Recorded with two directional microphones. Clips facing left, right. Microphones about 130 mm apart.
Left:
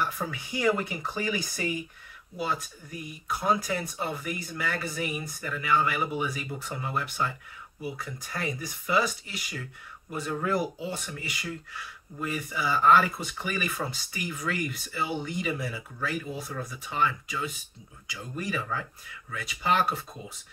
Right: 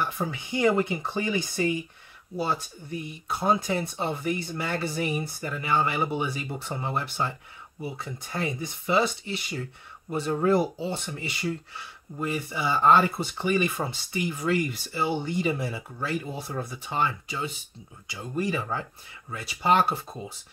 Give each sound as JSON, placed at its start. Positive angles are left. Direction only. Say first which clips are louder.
{"t": 0.0, "sound": "speech", "louder": "right 2 dB", "side_deg": -25}